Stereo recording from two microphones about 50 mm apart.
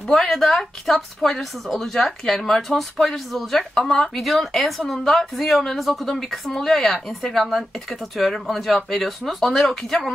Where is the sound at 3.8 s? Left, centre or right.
Centre.